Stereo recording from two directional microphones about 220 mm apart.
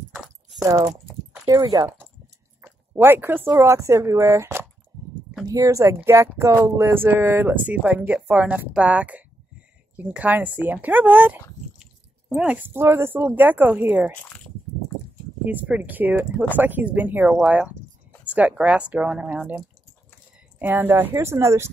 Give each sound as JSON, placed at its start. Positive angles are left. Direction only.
{"t": 0.1, "sound": "a sound", "side_deg": -15}
{"t": 1.3, "sound": "speech", "side_deg": -15}
{"t": 15.4, "sound": "speech", "side_deg": -5}